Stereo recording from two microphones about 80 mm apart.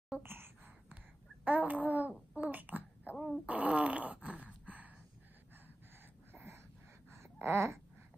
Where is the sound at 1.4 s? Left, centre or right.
Right.